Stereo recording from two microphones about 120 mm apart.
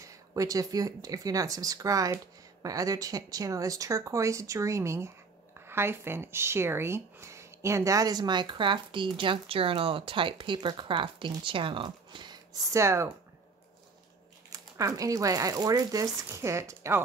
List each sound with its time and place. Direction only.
0.0 s speech: 25° right (ahead or behind)
12.7 s speech: 25° right (ahead or behind)
14.5 s speech: 30° right (ahead or behind)